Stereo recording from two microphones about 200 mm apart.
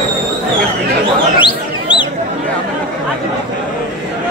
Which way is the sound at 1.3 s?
25° left (ahead or behind).